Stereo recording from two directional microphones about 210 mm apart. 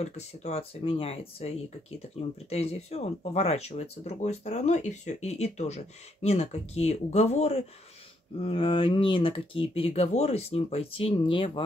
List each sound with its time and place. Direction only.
0.0 s speech: 30° left (ahead or behind)